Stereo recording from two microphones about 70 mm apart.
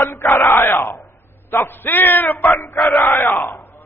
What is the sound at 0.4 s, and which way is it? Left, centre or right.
A man's voice, left.